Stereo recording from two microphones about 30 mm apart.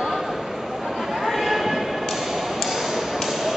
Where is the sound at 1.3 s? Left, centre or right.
Centre.